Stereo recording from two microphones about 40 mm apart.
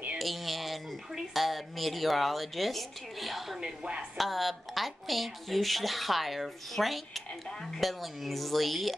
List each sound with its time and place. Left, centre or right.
0.2 s speech: centre
3.6 s a woman's voice: right
4.2 s speech: centre